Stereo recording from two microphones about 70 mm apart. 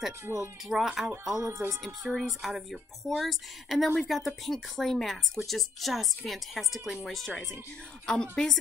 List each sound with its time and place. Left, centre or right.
0.3 s speech: right
0.7 s a woman's voice: centre
1.3 s speech: right
1.9 s a woman's voice: centre